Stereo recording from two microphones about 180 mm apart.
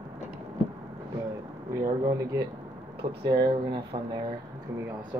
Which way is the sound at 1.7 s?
15° right (ahead or behind).